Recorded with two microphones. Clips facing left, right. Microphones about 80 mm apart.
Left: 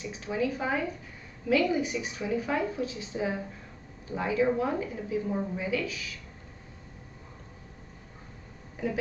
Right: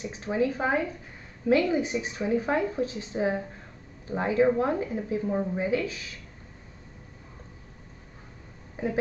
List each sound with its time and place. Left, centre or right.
0.0 s a woman's voice: right
8.8 s a woman's voice: right